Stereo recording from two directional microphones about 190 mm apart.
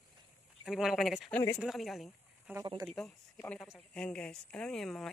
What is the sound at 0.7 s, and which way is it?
Speech, centre (ahead or behind).